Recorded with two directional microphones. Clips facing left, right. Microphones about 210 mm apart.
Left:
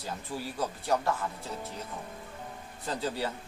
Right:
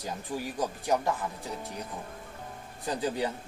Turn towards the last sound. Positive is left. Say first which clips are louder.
# right 2 dB
turn(degrees=-15)  # may be behind; listen again after turning